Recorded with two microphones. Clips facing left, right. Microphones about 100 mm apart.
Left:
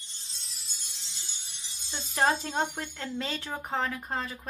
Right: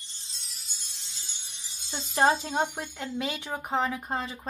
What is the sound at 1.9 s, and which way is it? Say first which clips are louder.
Speech: right 3 dB; 20° right (ahead or behind).